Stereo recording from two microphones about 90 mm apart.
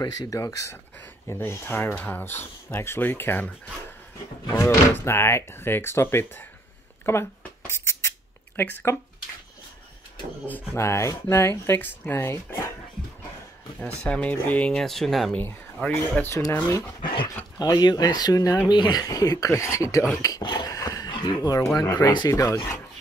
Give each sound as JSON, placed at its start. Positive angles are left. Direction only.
{"t": 0.0, "sound": "speech", "side_deg": 40}
{"t": 4.5, "sound": "speech", "side_deg": 40}
{"t": 7.1, "sound": "rodents", "side_deg": 30}
{"t": 8.5, "sound": "speech", "side_deg": 25}
{"t": 10.8, "sound": "speech", "side_deg": 30}
{"t": 13.7, "sound": "speech", "side_deg": 15}
{"t": 15.3, "sound": "speech", "side_deg": 15}
{"t": 17.6, "sound": "speech", "side_deg": 50}
{"t": 19.5, "sound": "speech", "side_deg": 35}
{"t": 20.4, "sound": "a sound", "side_deg": 50}
{"t": 21.7, "sound": "speech", "side_deg": 45}